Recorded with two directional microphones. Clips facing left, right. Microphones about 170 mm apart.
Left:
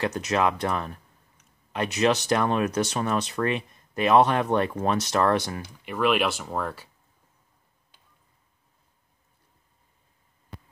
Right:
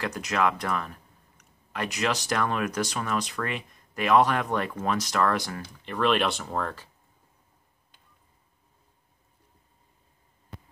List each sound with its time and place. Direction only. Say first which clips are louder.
0.0 s speech: left 2 dB; 25° left (ahead or behind)
5.6 s speech: left 1 dB; 10° left (ahead or behind)